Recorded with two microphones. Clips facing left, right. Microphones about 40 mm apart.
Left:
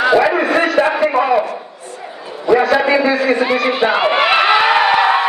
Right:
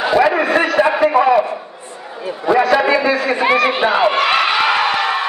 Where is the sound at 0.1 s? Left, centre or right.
Centre.